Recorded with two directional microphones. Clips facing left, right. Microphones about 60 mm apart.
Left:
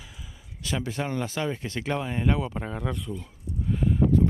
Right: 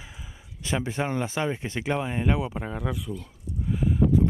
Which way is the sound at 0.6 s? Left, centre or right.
Right.